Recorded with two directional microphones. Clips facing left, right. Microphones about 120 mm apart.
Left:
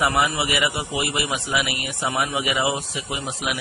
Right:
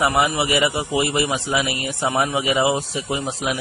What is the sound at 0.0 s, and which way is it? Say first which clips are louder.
A man's voice: right 2 dB; 20° right (ahead or behind).